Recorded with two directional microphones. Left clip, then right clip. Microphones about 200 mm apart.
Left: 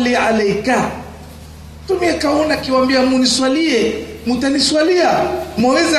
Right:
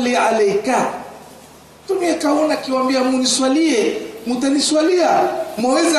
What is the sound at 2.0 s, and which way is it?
A man's voice, 40° left (ahead or behind).